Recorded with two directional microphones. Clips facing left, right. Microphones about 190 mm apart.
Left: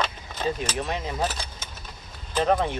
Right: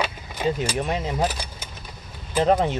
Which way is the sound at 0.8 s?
20° right (ahead or behind).